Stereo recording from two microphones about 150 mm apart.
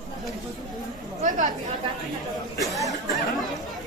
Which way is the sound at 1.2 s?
60° right (ahead or behind).